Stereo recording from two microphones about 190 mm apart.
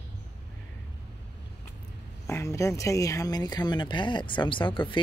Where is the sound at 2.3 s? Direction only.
15° left (ahead or behind).